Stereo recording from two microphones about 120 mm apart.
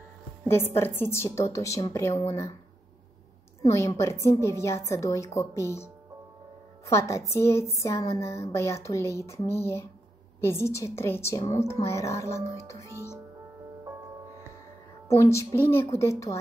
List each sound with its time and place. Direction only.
0.5 s a woman's voice: 20° left (ahead or behind)
3.6 s a woman's voice: 25° left (ahead or behind)
6.9 s a woman's voice: 25° left (ahead or behind)
15.0 s a woman's voice: 25° left (ahead or behind)